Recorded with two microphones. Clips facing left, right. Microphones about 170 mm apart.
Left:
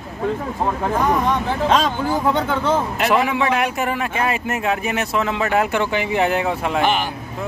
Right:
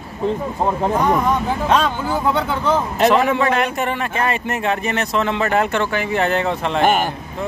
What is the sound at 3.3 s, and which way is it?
Speech, 5° left (ahead or behind).